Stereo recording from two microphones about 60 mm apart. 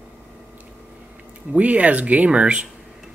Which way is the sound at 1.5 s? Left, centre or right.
Right.